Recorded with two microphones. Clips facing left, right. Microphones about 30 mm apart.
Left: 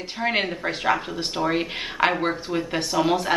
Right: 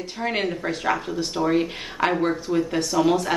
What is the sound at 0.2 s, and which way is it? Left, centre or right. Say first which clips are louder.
Speech: left 1 dB; left.